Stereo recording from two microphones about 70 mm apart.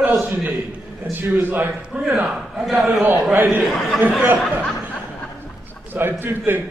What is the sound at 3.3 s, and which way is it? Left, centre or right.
Speech, right.